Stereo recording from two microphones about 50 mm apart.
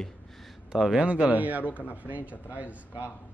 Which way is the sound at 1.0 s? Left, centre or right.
Right.